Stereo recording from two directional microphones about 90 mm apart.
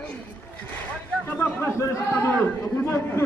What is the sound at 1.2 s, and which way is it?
Speech, 20° left (ahead or behind).